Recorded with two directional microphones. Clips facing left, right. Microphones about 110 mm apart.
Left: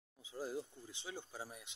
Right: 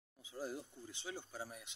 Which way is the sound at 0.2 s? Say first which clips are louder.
Left 2 dB; 20° left (ahead or behind).